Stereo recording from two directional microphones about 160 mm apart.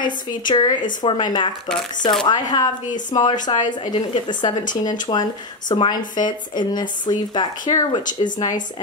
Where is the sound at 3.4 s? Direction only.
25° left (ahead or behind).